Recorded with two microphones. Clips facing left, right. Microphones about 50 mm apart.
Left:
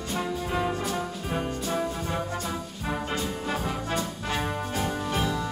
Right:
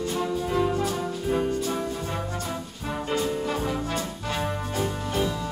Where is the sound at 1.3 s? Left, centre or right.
Centre.